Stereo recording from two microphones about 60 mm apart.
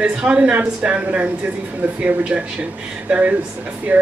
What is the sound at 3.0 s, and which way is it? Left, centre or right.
Speech, right.